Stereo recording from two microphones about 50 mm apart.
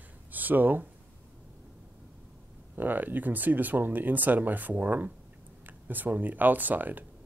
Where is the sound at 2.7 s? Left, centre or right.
Right.